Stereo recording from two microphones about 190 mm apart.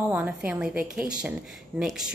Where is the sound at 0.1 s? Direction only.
10° right (ahead or behind).